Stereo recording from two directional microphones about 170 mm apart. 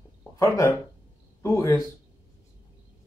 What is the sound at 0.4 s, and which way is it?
Speech, 20° left (ahead or behind).